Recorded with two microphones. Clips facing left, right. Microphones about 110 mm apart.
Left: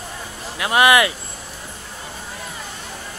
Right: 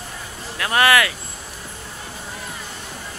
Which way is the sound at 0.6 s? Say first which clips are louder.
Left 2 dB; 15° left (ahead or behind).